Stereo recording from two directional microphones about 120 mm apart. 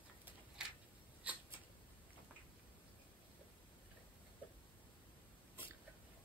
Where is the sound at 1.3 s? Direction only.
10° right (ahead or behind).